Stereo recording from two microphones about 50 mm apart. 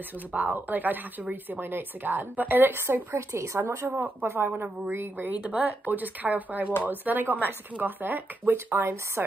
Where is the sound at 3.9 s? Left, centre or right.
Right.